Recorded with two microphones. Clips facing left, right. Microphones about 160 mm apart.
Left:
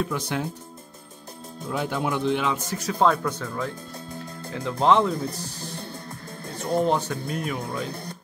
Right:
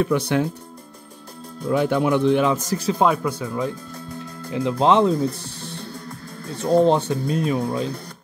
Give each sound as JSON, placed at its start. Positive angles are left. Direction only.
{"t": 0.0, "sound": "speech", "side_deg": -65}
{"t": 1.7, "sound": "speech", "side_deg": -60}
{"t": 2.4, "sound": "a man's voice", "side_deg": -40}
{"t": 2.9, "sound": "speech", "side_deg": -15}